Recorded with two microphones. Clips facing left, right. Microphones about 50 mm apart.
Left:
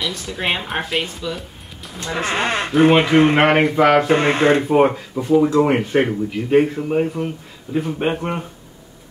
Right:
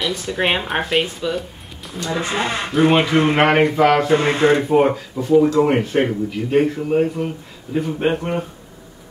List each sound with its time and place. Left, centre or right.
0.0 s speech: centre
2.2 s speech: left
2.7 s speech: centre
4.1 s speech: left
4.6 s speech: centre